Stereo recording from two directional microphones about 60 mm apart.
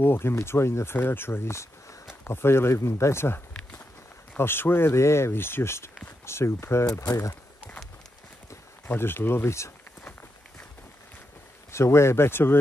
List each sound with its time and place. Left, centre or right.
0.0 s speech: left
0.9 s speech: left
6.9 s speech: left
8.8 s speech: left
11.7 s speech: left